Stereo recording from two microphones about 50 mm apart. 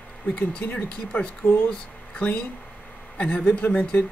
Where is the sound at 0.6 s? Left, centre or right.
Left.